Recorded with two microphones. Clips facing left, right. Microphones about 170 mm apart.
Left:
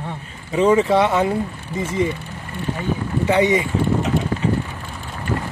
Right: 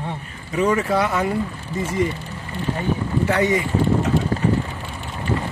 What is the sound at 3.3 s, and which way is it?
Speech, 20° left (ahead or behind).